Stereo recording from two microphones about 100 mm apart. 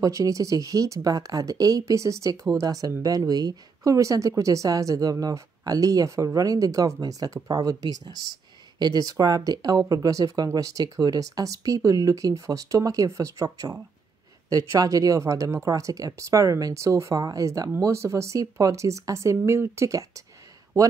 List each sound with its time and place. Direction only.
0.0 s speech: 35° right (ahead or behind)